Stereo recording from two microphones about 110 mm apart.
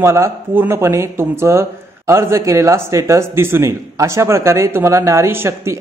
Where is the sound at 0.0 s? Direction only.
25° right (ahead or behind).